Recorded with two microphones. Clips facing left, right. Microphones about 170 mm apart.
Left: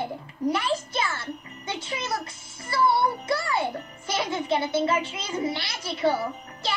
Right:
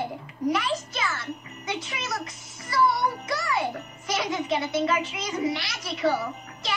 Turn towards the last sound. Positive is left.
turn(degrees=30)  # may be behind; listen again after turning